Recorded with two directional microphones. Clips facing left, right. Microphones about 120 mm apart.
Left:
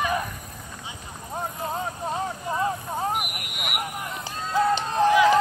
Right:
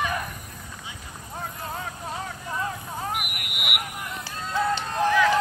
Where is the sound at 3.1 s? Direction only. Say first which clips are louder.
Left 3 dB; 35° left (ahead or behind).